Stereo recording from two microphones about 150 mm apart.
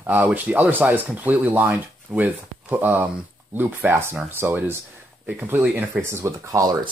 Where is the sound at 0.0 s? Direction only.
10° right (ahead or behind).